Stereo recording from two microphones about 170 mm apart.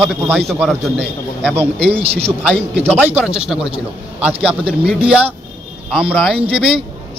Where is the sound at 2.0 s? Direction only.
35° right (ahead or behind).